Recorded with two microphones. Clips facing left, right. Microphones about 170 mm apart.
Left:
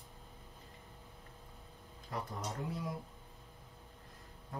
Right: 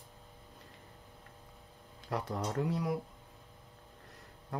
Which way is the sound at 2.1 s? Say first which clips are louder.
Right 7 dB; 75° right (ahead or behind).